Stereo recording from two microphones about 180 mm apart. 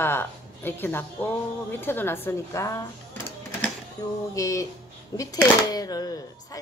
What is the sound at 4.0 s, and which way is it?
Speech, 20° left (ahead or behind).